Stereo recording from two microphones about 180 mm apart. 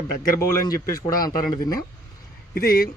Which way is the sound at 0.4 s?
20° left (ahead or behind).